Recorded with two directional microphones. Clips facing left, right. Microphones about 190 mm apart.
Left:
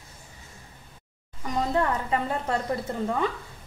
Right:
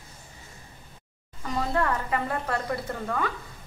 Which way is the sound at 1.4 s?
15° left (ahead or behind).